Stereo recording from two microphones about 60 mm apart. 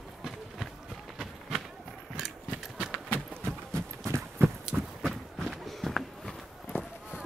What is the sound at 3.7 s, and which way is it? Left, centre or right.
Clip-clop, right.